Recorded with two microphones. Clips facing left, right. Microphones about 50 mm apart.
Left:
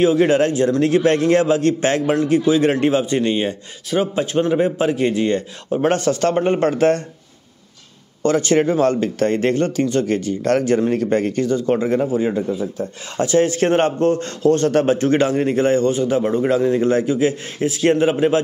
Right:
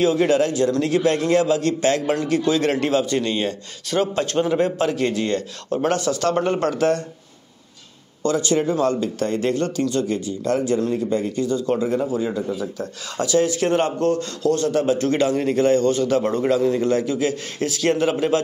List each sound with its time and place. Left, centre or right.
0.0 s a man's voice: left
2.0 s a man's voice: left
8.2 s a man's voice: left
11.5 s a man's voice: left
15.0 s a man's voice: left; by 16.4 s centre
16.4 s a man's voice: left